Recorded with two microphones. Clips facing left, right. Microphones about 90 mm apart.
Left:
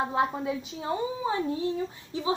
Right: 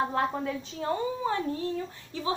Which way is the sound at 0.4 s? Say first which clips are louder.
Left 1 dB; 15° left (ahead or behind).